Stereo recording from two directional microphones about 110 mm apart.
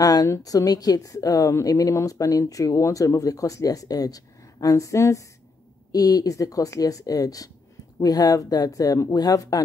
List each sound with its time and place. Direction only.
0.0 s a woman's voice: 35° left (ahead or behind)